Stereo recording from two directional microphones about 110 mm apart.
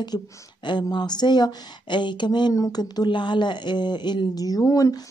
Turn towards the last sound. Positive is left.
turn(degrees=30)  # may be behind; listen again after turning